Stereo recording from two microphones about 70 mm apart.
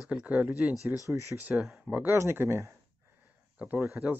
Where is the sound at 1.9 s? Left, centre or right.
Right.